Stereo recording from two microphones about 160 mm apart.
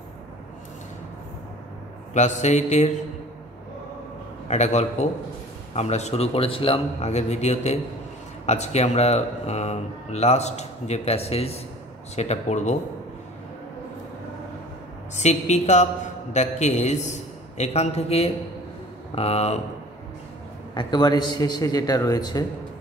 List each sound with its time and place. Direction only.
2.1 s speech: 45° left (ahead or behind)
4.5 s speech: 45° left (ahead or behind)
15.1 s speech: 45° left (ahead or behind)
20.7 s a man's voice: 25° left (ahead or behind)